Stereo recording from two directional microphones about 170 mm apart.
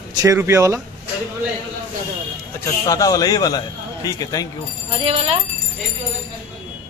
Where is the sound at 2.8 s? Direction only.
20° left (ahead or behind).